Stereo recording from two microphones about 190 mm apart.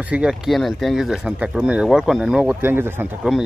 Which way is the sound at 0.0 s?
5° right (ahead or behind).